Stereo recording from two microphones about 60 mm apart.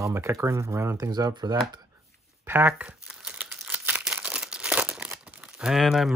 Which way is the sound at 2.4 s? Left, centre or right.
Right.